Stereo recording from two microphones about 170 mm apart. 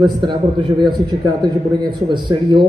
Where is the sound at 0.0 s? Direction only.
25° right (ahead or behind).